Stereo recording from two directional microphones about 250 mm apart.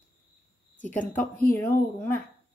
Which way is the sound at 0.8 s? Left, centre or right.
Centre.